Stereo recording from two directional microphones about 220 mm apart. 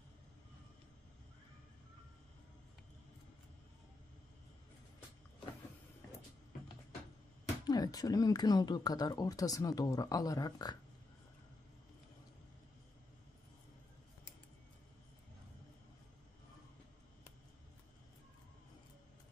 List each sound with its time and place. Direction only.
7.6 s speech: 15° left (ahead or behind)